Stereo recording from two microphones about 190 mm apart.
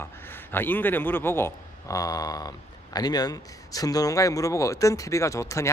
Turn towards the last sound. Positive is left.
turn(degrees=15)  # may be behind; listen again after turning